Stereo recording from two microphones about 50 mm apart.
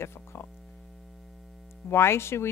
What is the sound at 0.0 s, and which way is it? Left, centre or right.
Mains hum, left.